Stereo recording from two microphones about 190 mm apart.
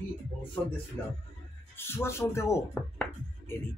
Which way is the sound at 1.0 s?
10° left (ahead or behind).